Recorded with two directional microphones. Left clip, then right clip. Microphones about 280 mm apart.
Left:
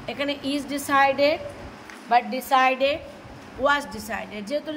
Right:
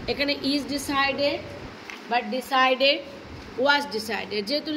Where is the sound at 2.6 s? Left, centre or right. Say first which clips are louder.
Right 1 dB; centre.